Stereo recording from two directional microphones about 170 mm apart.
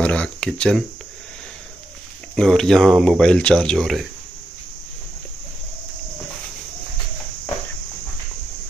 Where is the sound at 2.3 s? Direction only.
5° left (ahead or behind).